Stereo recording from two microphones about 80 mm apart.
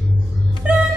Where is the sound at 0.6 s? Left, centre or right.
Centre.